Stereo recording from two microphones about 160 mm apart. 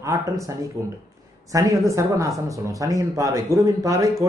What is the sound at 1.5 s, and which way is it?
Speech, 20° right (ahead or behind).